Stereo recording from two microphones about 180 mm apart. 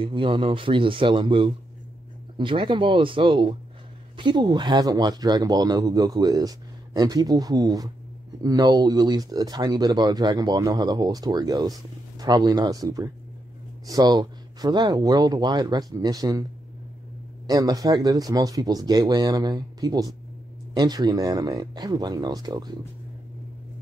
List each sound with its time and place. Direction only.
0.0 s speech: 30° right (ahead or behind)
17.5 s speech: 20° right (ahead or behind)